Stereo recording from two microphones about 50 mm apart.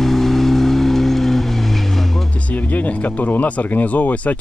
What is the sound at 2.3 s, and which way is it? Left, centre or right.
Speech, left.